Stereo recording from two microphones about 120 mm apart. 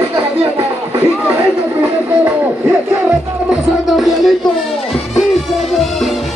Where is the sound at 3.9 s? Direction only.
Centre (ahead or behind).